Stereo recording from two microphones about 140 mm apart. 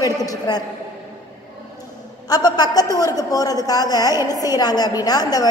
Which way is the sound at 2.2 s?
30° left (ahead or behind).